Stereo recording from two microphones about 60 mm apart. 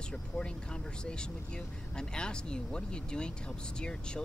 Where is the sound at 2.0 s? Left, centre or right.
Centre.